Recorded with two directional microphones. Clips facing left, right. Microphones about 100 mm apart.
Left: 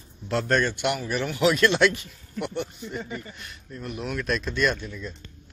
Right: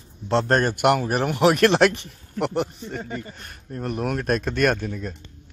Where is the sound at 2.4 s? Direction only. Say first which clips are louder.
Right 6 dB; 80° right.